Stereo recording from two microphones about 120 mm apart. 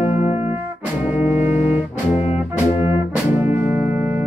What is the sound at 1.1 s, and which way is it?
Music, 10° right (ahead or behind).